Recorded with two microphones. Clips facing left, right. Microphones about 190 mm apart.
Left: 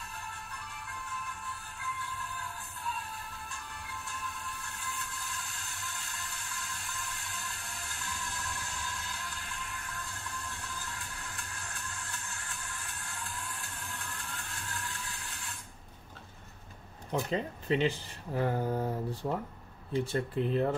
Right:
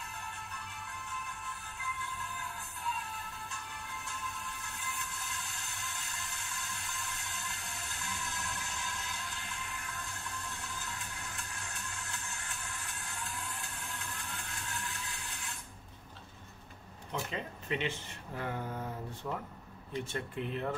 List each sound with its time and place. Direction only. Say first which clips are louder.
17.1 s speech: left 6 dB; 35° left (ahead or behind)